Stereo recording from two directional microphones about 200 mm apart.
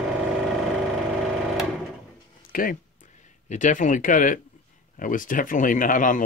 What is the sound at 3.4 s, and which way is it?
Speech, 40° left (ahead or behind).